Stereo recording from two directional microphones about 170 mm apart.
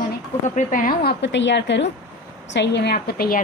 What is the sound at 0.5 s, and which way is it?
A woman's voice, 55° left (ahead or behind).